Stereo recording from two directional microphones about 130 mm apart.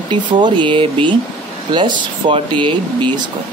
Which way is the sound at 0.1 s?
40° right (ahead or behind).